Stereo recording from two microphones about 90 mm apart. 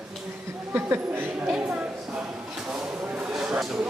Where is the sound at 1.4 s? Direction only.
15° right (ahead or behind).